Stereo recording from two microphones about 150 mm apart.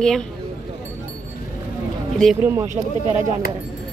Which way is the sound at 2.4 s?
15° right (ahead or behind).